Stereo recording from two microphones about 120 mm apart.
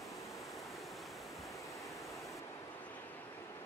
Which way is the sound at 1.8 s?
25° left (ahead or behind).